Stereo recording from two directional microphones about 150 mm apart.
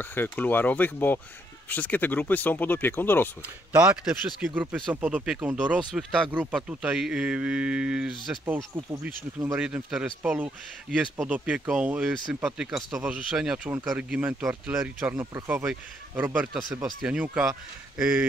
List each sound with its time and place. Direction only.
0.0 s speech: 15° left (ahead or behind)
3.7 s speech: 10° right (ahead or behind)
9.6 s speech: 5° right (ahead or behind)